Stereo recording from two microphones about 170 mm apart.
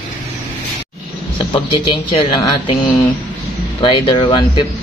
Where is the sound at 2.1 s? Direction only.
30° left (ahead or behind).